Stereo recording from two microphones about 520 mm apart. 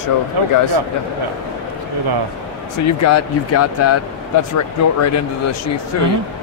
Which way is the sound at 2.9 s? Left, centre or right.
Left.